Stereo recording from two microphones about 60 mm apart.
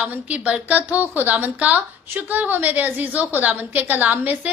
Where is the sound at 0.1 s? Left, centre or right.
Right.